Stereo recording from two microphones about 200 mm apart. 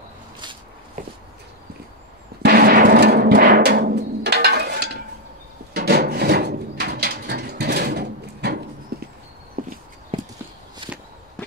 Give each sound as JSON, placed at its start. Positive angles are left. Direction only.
{"t": 2.4, "sound": "music", "side_deg": -50}
{"t": 5.7, "sound": "wood", "side_deg": -50}
{"t": 8.9, "sound": "horse", "side_deg": -50}
{"t": 10.1, "sound": "clip-clop", "side_deg": -25}
{"t": 10.8, "sound": "walk", "side_deg": -25}